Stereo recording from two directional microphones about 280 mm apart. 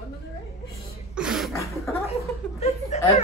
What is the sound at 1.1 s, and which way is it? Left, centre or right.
Cough, centre.